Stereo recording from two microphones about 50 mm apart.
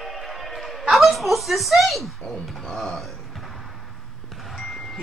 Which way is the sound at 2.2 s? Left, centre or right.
Left.